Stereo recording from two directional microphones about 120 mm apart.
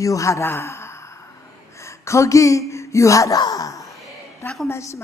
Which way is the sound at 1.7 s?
25° left (ahead or behind).